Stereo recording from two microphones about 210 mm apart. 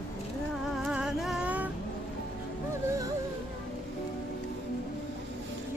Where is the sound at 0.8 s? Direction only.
5° right (ahead or behind).